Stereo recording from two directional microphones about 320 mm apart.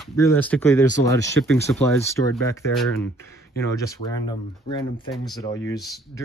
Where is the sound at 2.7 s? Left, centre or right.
Centre.